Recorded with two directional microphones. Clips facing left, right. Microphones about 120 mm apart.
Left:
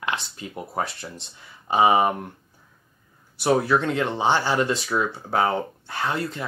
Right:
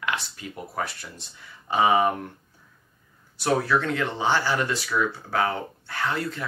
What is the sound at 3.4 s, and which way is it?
Speech, 20° left (ahead or behind).